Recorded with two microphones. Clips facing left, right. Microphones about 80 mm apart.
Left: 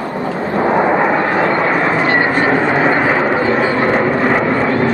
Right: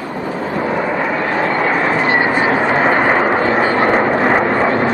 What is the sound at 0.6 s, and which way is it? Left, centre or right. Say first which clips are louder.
Vehicle: left 7 dB; left.